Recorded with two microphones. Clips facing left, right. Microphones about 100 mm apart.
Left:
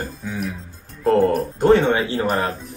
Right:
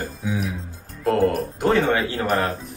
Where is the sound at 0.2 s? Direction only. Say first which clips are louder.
Right 4 dB; 5° right (ahead or behind).